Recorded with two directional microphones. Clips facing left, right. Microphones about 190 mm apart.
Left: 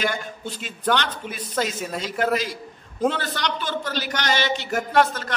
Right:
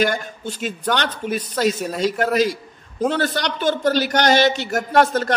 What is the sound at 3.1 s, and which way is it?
A man's voice, 40° right (ahead or behind).